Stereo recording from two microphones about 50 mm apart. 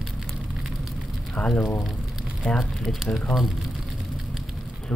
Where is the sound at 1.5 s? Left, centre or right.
Left.